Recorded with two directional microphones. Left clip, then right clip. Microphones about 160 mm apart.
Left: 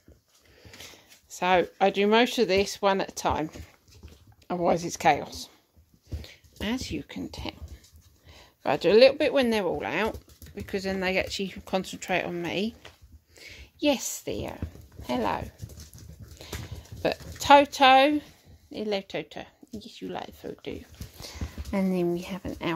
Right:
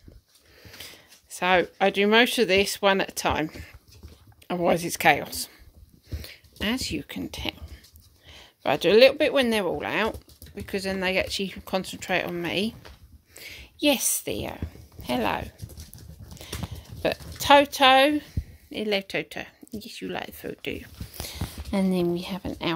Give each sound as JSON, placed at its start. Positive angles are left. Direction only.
{"t": 0.6, "sound": "speech", "side_deg": 0}
{"t": 6.0, "sound": "a sound", "side_deg": -5}
{"t": 8.3, "sound": "speech", "side_deg": 0}
{"t": 17.0, "sound": "a woman's voice", "side_deg": 5}